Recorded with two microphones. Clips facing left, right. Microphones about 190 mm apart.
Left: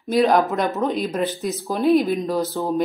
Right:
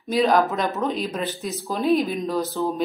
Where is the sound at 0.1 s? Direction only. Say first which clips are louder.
Left 2 dB; 15° left (ahead or behind).